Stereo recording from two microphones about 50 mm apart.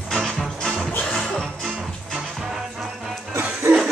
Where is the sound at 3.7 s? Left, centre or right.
Right.